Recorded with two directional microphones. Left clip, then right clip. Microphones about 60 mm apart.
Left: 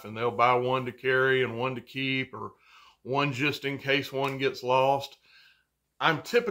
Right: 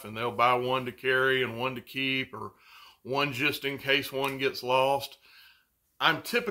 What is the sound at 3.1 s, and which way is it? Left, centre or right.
Speech, centre.